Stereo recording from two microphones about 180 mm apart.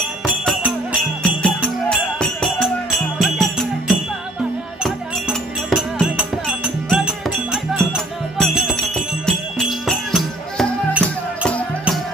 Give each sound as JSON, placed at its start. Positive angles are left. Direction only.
{"t": 1.2, "sound": "music", "side_deg": 5}